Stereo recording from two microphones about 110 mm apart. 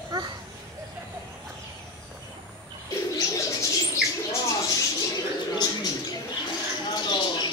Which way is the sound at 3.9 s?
30° left (ahead or behind).